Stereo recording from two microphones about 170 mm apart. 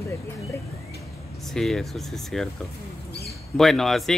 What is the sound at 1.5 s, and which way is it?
Speech, centre (ahead or behind).